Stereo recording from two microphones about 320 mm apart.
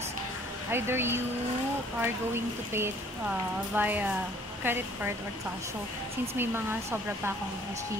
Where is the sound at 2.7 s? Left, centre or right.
Centre.